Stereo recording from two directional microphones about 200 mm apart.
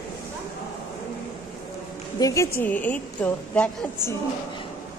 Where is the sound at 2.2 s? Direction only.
15° left (ahead or behind).